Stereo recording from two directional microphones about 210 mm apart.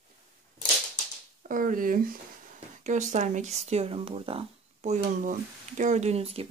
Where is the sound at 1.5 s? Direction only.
40° right (ahead or behind).